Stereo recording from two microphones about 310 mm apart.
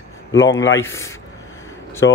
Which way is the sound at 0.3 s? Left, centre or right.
Left.